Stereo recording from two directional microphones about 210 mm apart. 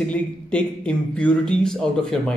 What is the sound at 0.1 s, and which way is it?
A man's voice, 5° left (ahead or behind).